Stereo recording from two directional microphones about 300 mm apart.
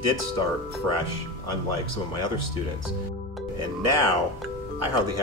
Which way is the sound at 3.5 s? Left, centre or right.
Right.